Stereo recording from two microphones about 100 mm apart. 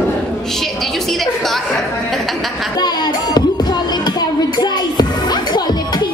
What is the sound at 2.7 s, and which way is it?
Music, 45° left (ahead or behind).